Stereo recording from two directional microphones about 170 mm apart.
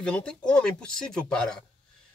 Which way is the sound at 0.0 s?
5° left (ahead or behind).